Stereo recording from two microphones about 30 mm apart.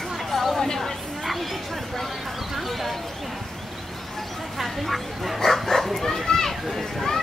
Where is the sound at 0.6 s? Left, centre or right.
Centre.